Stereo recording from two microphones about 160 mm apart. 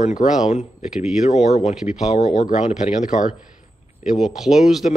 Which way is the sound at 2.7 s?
5° right (ahead or behind).